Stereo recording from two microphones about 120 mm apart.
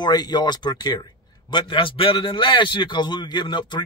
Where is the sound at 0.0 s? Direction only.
35° left (ahead or behind).